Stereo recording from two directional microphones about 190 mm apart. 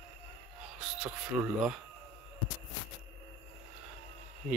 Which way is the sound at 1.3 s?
5° right (ahead or behind).